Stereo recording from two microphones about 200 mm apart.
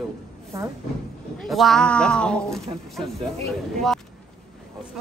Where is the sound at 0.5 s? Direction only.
15° right (ahead or behind).